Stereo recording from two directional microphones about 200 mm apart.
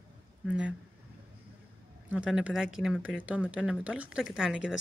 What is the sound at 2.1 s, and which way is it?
Speech, 5° right (ahead or behind).